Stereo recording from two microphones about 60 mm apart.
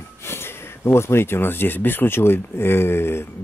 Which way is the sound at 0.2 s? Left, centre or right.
Left.